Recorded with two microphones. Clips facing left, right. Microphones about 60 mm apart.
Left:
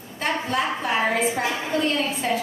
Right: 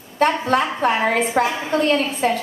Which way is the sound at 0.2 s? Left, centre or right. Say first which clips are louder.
Right 7 dB; right.